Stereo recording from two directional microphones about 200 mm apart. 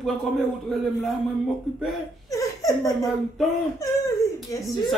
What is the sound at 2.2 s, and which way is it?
Laughter, 15° left (ahead or behind).